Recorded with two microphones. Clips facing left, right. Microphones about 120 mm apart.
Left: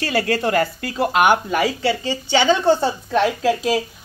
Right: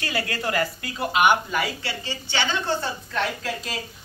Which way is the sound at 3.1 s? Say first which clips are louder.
Left 10 dB; 90° left.